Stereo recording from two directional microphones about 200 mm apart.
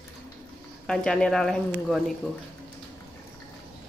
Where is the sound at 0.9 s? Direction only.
5° left (ahead or behind).